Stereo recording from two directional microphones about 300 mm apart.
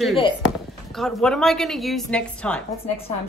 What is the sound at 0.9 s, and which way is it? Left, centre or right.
Speech, centre.